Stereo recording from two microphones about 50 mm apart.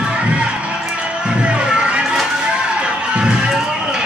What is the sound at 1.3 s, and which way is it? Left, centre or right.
Music, right.